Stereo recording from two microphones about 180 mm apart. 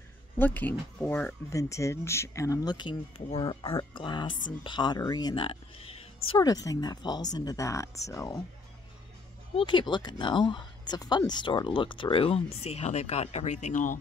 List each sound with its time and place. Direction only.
0.4 s speech: 10° left (ahead or behind)
9.6 s speech: 25° left (ahead or behind); by 13.9 s 45° left (ahead or behind)